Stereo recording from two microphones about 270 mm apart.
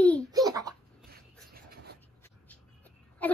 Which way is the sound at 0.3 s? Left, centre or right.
Centre.